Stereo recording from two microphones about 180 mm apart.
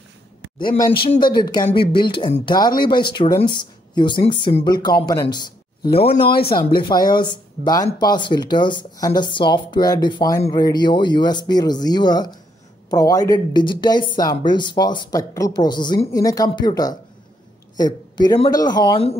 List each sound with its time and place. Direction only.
0.6 s speech: 25° left (ahead or behind)
6.2 s speech: 60° left (ahead or behind)
6.8 s speech: 25° left (ahead or behind)